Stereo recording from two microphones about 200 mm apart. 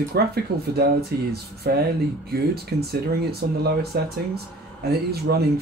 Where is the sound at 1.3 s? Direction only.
50° right (ahead or behind).